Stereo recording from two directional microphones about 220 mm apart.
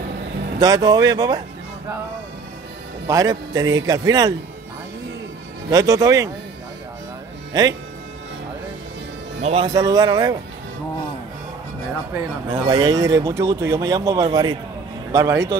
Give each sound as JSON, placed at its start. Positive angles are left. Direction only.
{"t": 0.6, "sound": "speech", "side_deg": -15}
{"t": 3.1, "sound": "speech", "side_deg": -15}
{"t": 5.7, "sound": "speech", "side_deg": -15}
{"t": 7.5, "sound": "speech", "side_deg": -15}
{"t": 9.4, "sound": "speech", "side_deg": -25}
{"t": 12.1, "sound": "speech", "side_deg": -20}